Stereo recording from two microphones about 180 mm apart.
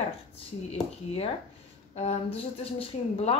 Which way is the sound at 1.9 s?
35° left (ahead or behind).